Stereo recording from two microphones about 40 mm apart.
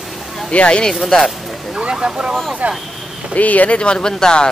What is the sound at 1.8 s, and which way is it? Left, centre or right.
Speech, centre.